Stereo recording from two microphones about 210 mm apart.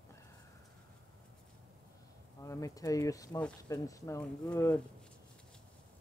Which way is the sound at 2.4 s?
15° left (ahead or behind).